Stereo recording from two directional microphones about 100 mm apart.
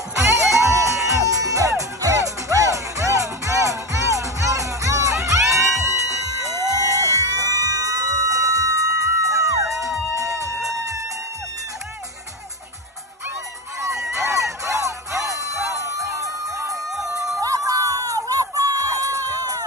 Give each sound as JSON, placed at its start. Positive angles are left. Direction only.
{"t": 0.2, "sound": "music", "side_deg": -30}
{"t": 13.7, "sound": "music", "side_deg": -30}